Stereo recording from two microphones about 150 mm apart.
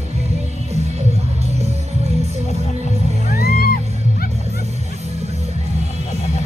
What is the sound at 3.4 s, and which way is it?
Music, 85° left.